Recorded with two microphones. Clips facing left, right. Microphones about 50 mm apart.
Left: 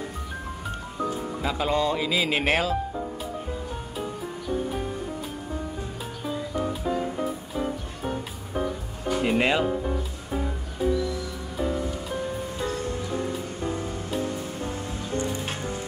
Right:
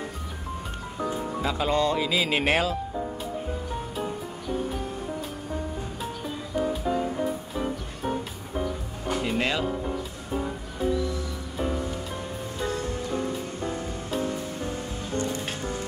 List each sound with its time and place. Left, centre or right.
1.4 s speech: centre
9.2 s speech: left